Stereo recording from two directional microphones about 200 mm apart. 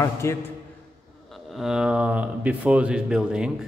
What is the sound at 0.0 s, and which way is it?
Speech, 15° left (ahead or behind).